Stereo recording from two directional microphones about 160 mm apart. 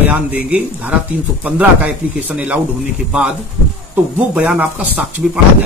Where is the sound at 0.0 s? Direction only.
10° right (ahead or behind).